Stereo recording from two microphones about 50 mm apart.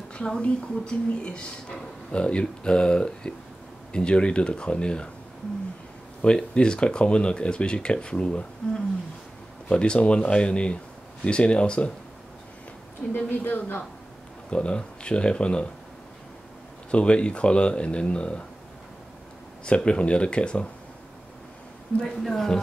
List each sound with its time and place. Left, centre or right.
0.1 s speech: centre
6.2 s speech: centre
13.1 s speech: left
14.5 s speech: left
16.9 s speech: left
19.6 s speech: centre
22.0 s speech: centre